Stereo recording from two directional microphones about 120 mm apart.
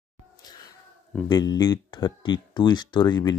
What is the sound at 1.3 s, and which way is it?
Speech, 35° left (ahead or behind).